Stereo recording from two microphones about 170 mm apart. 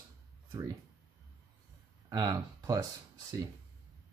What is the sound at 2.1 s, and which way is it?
Speech, 20° right (ahead or behind).